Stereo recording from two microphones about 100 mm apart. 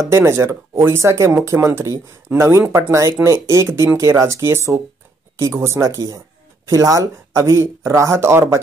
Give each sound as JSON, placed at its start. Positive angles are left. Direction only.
{"t": 0.0, "sound": "speech", "side_deg": -25}